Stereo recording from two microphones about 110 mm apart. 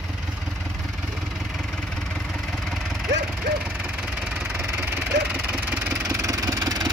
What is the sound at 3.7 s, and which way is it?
Engine, 10° right (ahead or behind).